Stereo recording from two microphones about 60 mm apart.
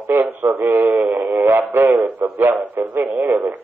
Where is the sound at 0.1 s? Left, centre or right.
Right.